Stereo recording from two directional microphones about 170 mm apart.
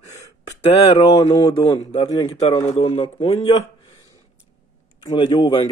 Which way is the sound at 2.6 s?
35° left (ahead or behind).